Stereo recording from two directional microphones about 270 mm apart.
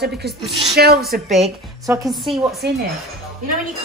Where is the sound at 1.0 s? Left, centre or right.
Centre.